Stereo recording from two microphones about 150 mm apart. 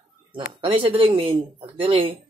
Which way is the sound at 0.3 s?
35° right (ahead or behind).